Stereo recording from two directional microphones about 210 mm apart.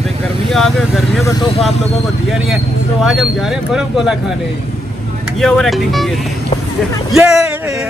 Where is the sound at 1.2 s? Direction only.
20° left (ahead or behind).